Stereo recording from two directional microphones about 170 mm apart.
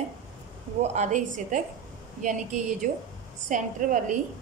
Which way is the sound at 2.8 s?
50° right (ahead or behind).